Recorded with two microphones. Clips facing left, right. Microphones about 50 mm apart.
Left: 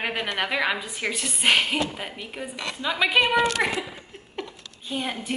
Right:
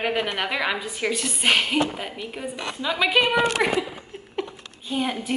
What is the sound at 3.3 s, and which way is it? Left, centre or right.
Speech, centre.